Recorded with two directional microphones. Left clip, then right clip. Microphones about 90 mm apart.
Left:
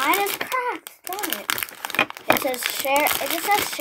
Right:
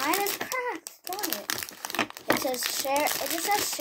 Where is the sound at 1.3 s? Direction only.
45° left (ahead or behind).